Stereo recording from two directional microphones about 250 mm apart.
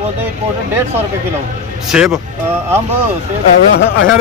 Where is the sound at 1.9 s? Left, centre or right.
Centre.